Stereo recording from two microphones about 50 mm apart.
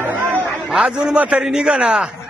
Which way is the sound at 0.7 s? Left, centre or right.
Centre.